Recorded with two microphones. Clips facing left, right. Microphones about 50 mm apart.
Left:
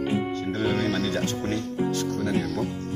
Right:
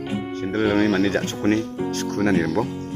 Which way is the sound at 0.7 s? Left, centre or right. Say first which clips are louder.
Right 6 dB; right.